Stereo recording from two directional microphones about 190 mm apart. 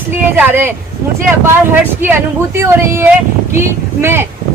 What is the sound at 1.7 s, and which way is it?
A woman's voice, 10° right (ahead or behind).